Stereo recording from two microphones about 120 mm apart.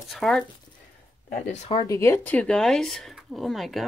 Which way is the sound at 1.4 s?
80° left.